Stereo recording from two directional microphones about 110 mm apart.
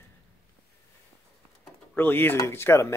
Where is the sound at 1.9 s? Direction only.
20° left (ahead or behind).